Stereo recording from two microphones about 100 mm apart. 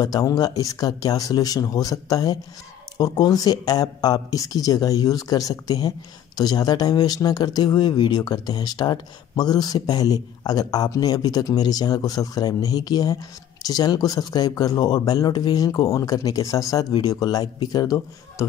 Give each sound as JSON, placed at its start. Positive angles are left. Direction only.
{"t": 0.0, "sound": "speech", "side_deg": 35}